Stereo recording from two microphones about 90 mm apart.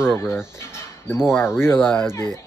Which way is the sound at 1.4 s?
25° left (ahead or behind).